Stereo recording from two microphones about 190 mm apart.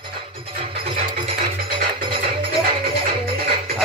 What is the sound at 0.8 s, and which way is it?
Music, 30° right (ahead or behind).